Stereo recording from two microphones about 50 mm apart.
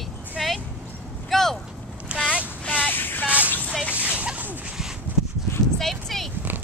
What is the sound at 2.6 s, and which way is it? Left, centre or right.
Vehicle, left.